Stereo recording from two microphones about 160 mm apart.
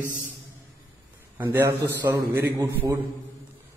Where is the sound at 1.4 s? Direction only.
15° right (ahead or behind).